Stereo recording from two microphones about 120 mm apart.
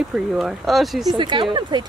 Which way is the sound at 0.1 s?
5° right (ahead or behind).